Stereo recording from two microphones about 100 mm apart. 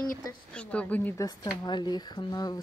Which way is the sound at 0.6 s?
10° left (ahead or behind).